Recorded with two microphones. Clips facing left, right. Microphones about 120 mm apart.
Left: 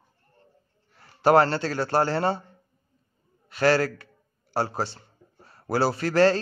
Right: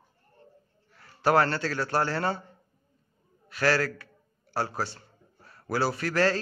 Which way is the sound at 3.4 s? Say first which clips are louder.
Left 4 dB; 25° left (ahead or behind).